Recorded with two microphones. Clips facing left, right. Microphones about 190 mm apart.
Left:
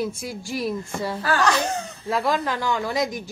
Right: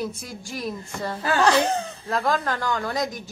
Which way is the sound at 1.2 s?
25° right (ahead or behind).